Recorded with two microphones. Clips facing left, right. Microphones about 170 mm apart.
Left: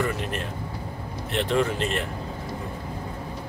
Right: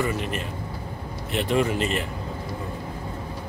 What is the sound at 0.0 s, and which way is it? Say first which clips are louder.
Speech: right 1 dB; centre (ahead or behind).